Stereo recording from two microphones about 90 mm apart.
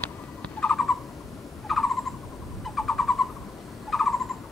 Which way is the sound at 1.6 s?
Centre (ahead or behind).